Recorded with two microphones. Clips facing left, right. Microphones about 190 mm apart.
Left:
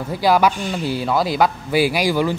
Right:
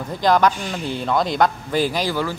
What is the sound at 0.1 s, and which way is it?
Speech, 10° left (ahead or behind).